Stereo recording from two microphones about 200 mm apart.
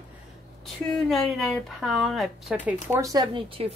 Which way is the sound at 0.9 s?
Centre (ahead or behind).